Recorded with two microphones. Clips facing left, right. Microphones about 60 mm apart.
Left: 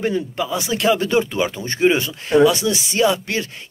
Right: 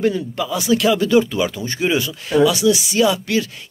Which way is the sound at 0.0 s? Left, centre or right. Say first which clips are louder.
Right 2 dB; left.